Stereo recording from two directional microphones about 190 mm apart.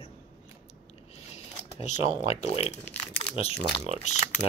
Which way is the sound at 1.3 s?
35° left (ahead or behind).